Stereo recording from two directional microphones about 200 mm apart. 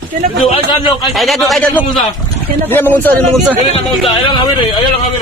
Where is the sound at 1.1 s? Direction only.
Centre (ahead or behind).